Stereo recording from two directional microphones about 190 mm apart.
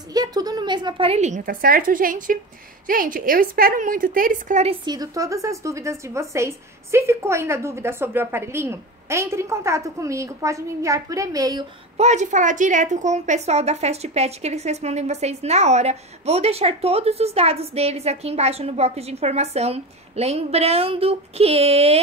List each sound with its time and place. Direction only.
0.1 s a woman's voice: 20° right (ahead or behind); by 4.7 s 40° right (ahead or behind)
4.8 s a woman's voice: 20° right (ahead or behind)
12.0 s a woman's voice: 40° right (ahead or behind)